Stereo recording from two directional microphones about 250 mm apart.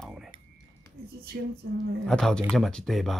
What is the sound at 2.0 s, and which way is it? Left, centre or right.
Speech, centre.